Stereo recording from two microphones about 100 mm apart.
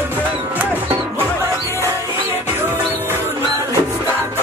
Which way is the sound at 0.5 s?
15° right (ahead or behind).